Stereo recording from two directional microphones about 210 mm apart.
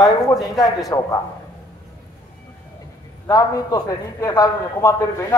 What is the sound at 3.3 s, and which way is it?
A man's voice, 15° left (ahead or behind).